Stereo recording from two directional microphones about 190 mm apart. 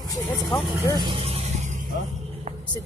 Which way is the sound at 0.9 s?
25° right (ahead or behind).